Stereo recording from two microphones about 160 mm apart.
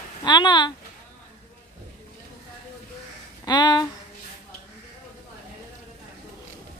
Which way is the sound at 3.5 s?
25° left (ahead or behind).